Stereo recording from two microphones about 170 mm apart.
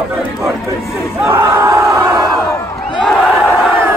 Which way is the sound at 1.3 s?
15° right (ahead or behind).